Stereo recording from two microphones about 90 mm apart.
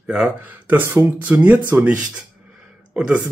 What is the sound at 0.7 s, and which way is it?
Speech, 20° right (ahead or behind).